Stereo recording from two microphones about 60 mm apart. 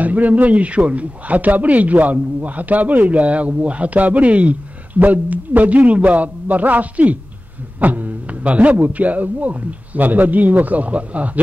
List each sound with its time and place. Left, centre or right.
0.0 s a man's voice: right